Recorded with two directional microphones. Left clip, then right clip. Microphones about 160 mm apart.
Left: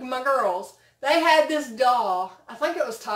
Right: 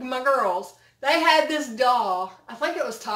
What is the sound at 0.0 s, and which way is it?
Speech, centre (ahead or behind).